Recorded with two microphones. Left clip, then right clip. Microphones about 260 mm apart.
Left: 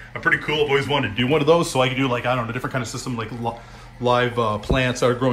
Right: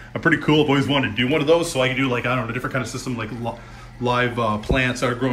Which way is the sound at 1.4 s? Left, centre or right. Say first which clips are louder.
Left 1 dB; left.